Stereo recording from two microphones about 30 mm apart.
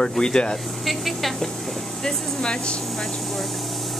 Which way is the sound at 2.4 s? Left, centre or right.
Left.